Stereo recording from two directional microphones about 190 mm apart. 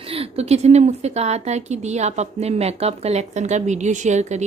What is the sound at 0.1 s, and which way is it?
A woman's voice, 30° right (ahead or behind).